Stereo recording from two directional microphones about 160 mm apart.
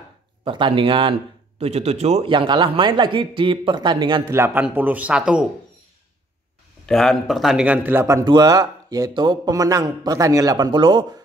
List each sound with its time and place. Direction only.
0.4 s a man's voice: 30° right (ahead or behind)
2.3 s a man's voice: 30° right (ahead or behind)
4.3 s a man's voice: 15° right (ahead or behind)
6.9 s speech: centre (ahead or behind); by 11.1 s 30° right (ahead or behind)